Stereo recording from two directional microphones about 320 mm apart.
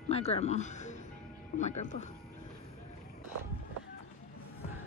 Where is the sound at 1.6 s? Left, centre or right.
Left.